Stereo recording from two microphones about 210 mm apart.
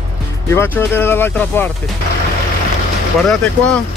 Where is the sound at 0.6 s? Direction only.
10° left (ahead or behind).